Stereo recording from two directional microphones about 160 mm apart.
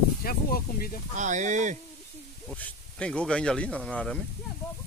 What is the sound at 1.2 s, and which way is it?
Speech, 50° right (ahead or behind).